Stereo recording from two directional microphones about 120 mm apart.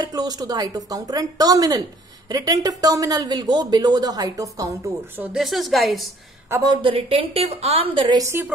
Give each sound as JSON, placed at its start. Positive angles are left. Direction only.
{"t": 0.0, "sound": "a woman's voice", "side_deg": -35}
{"t": 5.1, "sound": "speech", "side_deg": -15}
{"t": 5.4, "sound": "a woman's voice", "side_deg": 0}
{"t": 6.5, "sound": "a woman's voice", "side_deg": -30}
{"t": 6.8, "sound": "a woman's voice", "side_deg": -50}
{"t": 8.2, "sound": "a woman's voice", "side_deg": -20}